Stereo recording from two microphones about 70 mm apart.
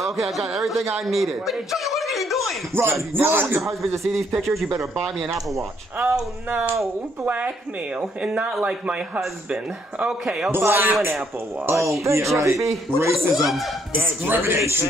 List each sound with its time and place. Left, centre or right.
0.0 s speech: centre
2.7 s speech: right
4.1 s speech: centre
5.9 s speech: right
7.2 s a man's voice: right
10.5 s speech: right
12.0 s speech: right
13.3 s speech: centre
14.0 s speech: right